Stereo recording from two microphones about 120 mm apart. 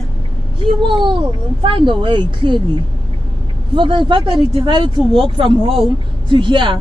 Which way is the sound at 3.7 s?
45° right (ahead or behind).